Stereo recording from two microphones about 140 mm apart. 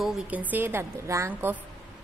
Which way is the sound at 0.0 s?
10° right (ahead or behind).